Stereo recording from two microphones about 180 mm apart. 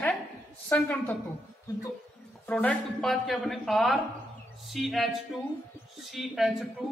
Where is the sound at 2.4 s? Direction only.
10° left (ahead or behind).